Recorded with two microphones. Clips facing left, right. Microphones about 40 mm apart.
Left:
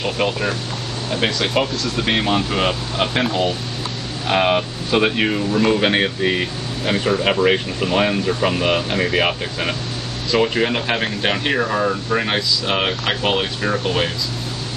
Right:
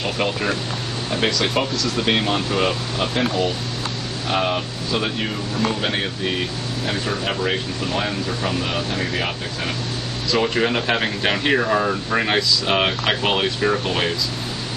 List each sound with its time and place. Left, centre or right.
0.0 s speech: centre
3.0 s speech: left
10.3 s speech: centre